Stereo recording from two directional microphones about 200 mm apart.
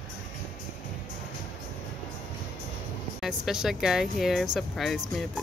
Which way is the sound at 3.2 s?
Centre (ahead or behind).